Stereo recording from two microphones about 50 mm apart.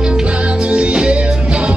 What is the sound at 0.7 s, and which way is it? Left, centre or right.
Music, centre.